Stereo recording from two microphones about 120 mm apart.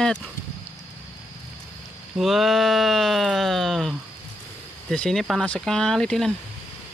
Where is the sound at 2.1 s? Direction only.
Centre (ahead or behind).